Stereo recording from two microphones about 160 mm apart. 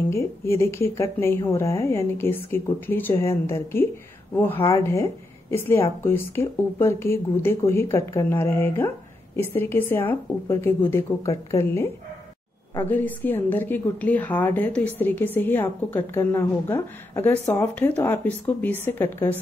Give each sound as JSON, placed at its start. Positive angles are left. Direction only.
{"t": 0.1, "sound": "a woman's voice", "side_deg": 15}